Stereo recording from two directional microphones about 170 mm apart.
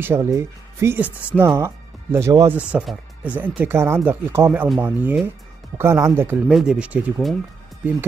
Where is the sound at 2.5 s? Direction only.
5° right (ahead or behind).